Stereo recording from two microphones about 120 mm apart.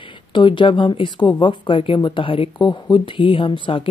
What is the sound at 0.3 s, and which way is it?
Speech, 40° left (ahead or behind).